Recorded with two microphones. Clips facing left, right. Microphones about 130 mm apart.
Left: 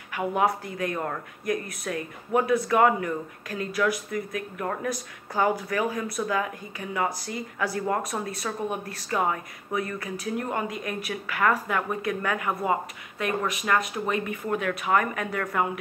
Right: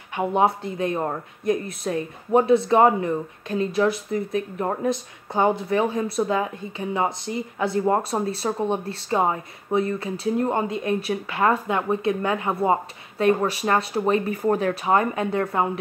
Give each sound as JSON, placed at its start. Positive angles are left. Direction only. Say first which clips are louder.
{"t": 0.1, "sound": "speech", "louder": "right 4 dB", "side_deg": -25}